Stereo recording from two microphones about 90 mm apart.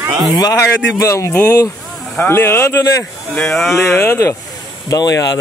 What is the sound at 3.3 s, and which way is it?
Mantra, 5° left (ahead or behind).